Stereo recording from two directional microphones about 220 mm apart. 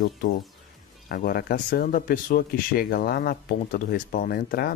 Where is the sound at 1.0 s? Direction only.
40° left (ahead or behind).